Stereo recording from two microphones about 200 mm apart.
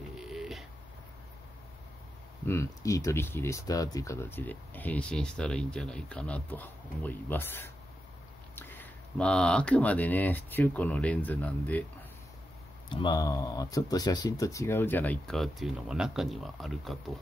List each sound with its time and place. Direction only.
0.2 s a sound: centre (ahead or behind)
2.4 s speech: 15° left (ahead or behind)
12.9 s speech: 20° left (ahead or behind); by 17.0 s centre (ahead or behind)